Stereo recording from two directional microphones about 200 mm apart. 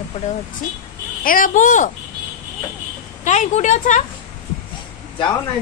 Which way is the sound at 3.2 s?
35° left (ahead or behind).